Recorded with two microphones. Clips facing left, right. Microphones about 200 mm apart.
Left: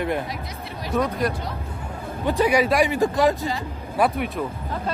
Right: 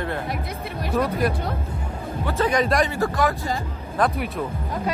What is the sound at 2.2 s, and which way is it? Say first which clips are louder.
Speech: left 2 dB; 15° left (ahead or behind).